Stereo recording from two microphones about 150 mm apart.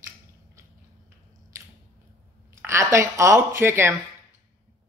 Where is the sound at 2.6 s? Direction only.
15° right (ahead or behind).